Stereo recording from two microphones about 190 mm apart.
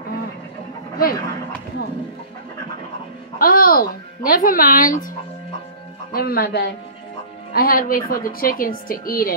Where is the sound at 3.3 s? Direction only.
50° left (ahead or behind).